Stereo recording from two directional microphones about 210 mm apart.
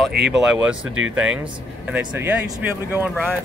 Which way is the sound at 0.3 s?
5° right (ahead or behind).